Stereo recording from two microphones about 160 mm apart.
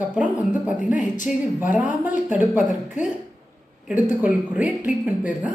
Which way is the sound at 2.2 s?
10° right (ahead or behind).